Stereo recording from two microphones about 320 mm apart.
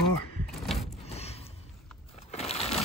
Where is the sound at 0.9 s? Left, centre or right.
Centre.